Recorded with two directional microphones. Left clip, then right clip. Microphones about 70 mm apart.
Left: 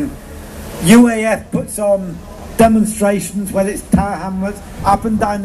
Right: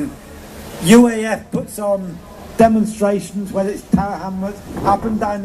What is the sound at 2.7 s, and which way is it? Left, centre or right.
A man's voice, left.